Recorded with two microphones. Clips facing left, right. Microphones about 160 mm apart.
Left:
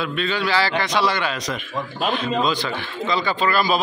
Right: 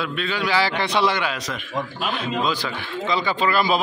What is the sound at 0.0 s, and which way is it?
A man's voice, 5° right (ahead or behind).